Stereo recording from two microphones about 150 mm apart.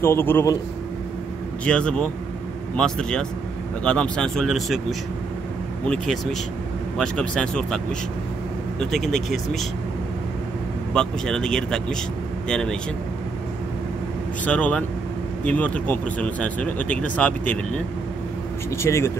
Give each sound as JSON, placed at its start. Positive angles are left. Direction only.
{"t": 0.0, "sound": "speech", "side_deg": 15}
{"t": 1.6, "sound": "speech", "side_deg": 5}
{"t": 7.0, "sound": "speech", "side_deg": 5}
{"t": 10.9, "sound": "speech", "side_deg": 5}
{"t": 14.4, "sound": "speech", "side_deg": 10}